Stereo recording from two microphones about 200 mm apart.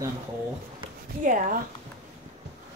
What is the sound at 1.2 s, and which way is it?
Speech, 40° right (ahead or behind).